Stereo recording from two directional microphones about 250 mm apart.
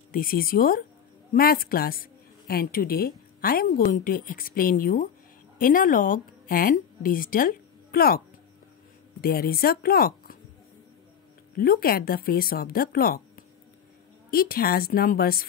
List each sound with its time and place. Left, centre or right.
0.1 s a woman's voice: left
9.2 s a woman's voice: left
11.5 s a woman's voice: left